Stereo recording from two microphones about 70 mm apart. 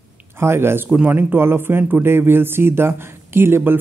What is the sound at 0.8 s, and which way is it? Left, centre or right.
Speech, right.